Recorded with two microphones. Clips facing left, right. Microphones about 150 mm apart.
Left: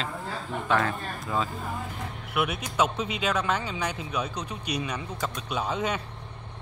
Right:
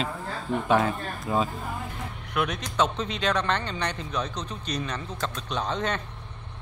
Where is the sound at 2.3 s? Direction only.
10° left (ahead or behind).